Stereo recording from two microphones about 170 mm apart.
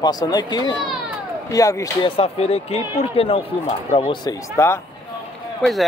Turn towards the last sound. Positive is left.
turn(degrees=0)  # may be behind; listen again after turning